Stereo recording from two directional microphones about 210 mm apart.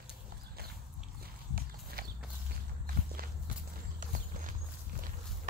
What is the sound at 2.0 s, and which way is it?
Walk, 45° right (ahead or behind).